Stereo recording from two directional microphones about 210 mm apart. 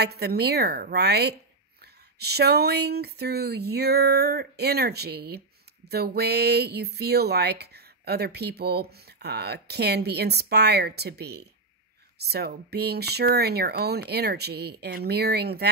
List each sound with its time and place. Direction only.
0.0 s speech: 50° right (ahead or behind)